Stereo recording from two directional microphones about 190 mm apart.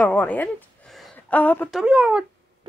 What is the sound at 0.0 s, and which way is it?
Speech, 10° left (ahead or behind).